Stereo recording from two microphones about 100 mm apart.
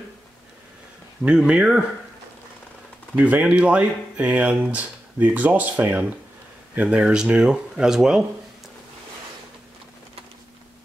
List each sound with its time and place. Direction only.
1.2 s speech: 10° right (ahead or behind)
3.2 s speech: 15° right (ahead or behind)